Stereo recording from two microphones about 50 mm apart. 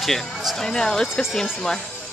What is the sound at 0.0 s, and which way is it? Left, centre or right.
Speech, centre.